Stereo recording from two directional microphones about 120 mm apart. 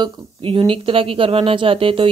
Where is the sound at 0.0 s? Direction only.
45° right (ahead or behind).